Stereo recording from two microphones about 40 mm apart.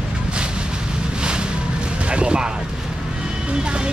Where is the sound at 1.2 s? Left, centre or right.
Right.